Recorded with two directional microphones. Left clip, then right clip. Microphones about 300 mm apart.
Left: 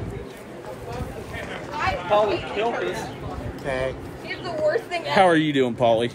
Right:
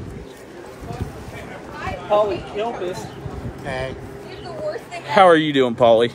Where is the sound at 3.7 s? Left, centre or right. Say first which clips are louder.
Left 1 dB; centre.